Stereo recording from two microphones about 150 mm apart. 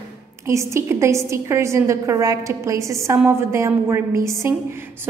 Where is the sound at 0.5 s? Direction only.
20° right (ahead or behind).